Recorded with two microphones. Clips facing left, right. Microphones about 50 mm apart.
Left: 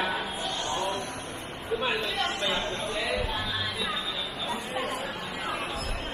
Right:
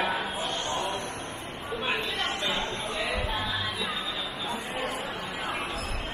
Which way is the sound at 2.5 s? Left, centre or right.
Centre.